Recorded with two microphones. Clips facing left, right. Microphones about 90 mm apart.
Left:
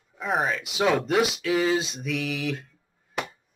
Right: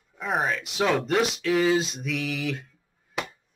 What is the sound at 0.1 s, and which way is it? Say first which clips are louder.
Speech: left 1 dB; centre (ahead or behind).